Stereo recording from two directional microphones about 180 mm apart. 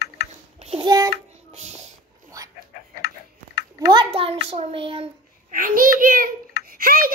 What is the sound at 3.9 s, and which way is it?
A child's voice, 30° right (ahead or behind).